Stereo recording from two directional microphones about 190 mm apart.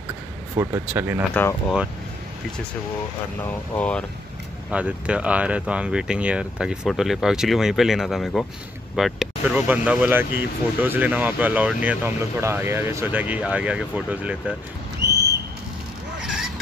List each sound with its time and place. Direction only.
0.6 s speech: 15° right (ahead or behind)
1.3 s speech: 10° left (ahead or behind)
3.7 s speech: 5° left (ahead or behind)
4.6 s speech: 5° right (ahead or behind)
15.0 s a sound: 60° right (ahead or behind)
16.2 s zipper: centre (ahead or behind)